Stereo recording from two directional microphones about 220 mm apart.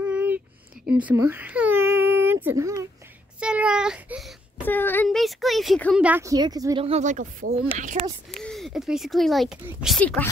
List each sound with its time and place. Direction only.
0.0 s a sound: 10° right (ahead or behind)
0.9 s baby cry: 10° right (ahead or behind)
3.3 s a child's voice: 5° right (ahead or behind)
6.0 s speech: 10° right (ahead or behind); by 8.1 s 35° right (ahead or behind)
8.3 s a child's voice: centre (ahead or behind)